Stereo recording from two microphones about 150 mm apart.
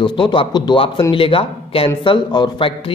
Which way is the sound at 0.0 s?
30° left (ahead or behind).